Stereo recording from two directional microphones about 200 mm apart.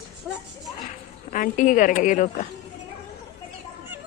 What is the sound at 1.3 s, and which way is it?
A woman's voice, 40° left (ahead or behind).